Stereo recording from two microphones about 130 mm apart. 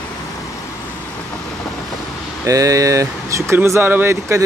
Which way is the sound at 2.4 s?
25° right (ahead or behind).